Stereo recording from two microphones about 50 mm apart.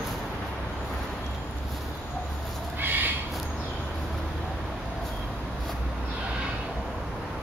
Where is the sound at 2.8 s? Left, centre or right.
Right.